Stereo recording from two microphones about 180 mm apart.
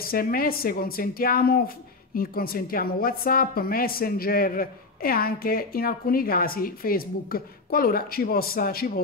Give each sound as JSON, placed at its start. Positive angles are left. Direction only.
{"t": 0.0, "sound": "a woman's voice", "side_deg": 55}